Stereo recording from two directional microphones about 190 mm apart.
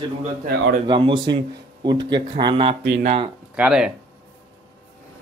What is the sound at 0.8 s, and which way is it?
Speech, 25° right (ahead or behind).